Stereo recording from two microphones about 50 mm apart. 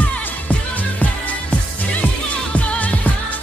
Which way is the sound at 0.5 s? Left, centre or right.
Left.